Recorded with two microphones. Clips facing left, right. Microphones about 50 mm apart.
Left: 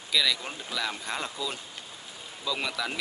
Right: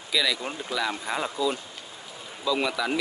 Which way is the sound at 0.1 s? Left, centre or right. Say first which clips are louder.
Right 1 dB; centre.